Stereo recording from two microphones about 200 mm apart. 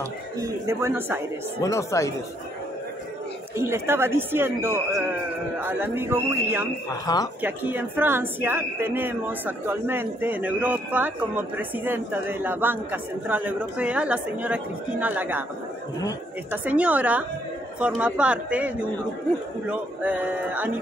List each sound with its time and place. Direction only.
0.4 s speech: 15° right (ahead or behind)
1.6 s speech: 15° left (ahead or behind)
3.5 s speech: 10° right (ahead or behind)
7.1 s speech: 20° left (ahead or behind)
7.4 s speech: 10° right (ahead or behind)
16.6 s speech: 5° right (ahead or behind)